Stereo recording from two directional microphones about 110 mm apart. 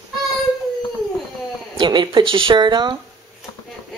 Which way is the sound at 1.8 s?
40° right (ahead or behind).